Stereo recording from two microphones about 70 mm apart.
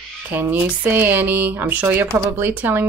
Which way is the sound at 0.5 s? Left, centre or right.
Right.